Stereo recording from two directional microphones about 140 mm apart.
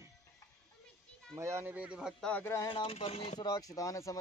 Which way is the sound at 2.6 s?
40° left (ahead or behind).